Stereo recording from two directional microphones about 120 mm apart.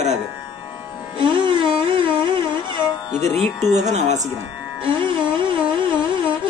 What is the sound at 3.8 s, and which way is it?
Speech, 75° right (ahead or behind).